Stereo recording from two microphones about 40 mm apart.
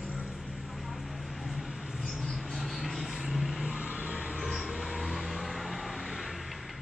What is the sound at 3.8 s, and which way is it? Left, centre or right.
Vehicle, right.